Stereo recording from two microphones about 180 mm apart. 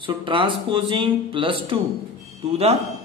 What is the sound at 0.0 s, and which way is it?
Speech, 30° right (ahead or behind).